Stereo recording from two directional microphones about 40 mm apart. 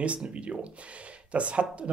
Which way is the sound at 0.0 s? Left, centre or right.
Right.